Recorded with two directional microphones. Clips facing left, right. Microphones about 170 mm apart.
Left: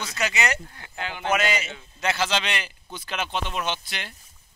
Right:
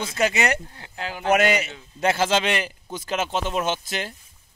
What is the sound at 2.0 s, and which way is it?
A man's voice, 45° right (ahead or behind).